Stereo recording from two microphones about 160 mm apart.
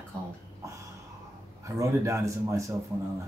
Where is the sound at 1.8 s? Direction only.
20° right (ahead or behind).